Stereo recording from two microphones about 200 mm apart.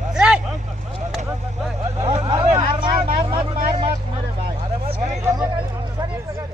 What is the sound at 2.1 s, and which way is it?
Vehicle, 30° right (ahead or behind).